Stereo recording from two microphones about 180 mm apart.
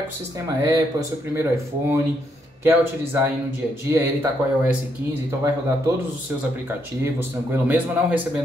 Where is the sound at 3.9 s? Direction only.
10° right (ahead or behind).